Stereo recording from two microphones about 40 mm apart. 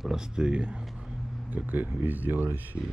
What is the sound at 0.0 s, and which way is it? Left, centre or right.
Speech, centre.